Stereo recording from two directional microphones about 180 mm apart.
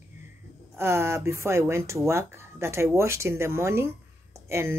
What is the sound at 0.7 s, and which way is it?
Speech, 15° right (ahead or behind).